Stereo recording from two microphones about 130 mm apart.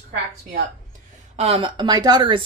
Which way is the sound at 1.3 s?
50° right (ahead or behind).